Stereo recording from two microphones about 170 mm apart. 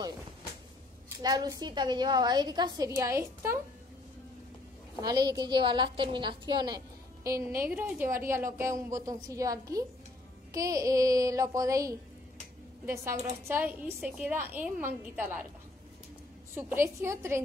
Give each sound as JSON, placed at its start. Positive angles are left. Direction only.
{"t": 1.2, "sound": "a woman's voice", "side_deg": -20}
{"t": 5.0, "sound": "a woman's voice", "side_deg": -25}
{"t": 16.5, "sound": "a woman's voice", "side_deg": -15}